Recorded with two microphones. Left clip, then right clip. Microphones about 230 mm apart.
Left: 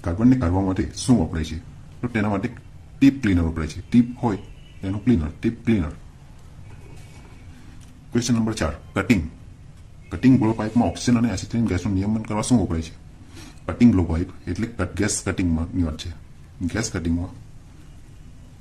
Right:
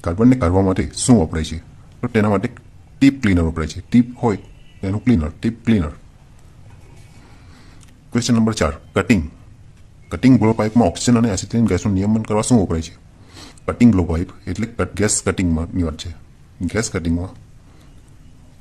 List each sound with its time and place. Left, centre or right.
0.0 s a man's voice: right
8.1 s a man's voice: right